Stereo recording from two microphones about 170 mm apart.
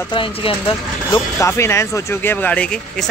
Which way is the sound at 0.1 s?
30° left (ahead or behind).